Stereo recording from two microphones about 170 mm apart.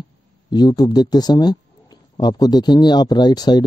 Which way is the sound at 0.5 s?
25° left (ahead or behind).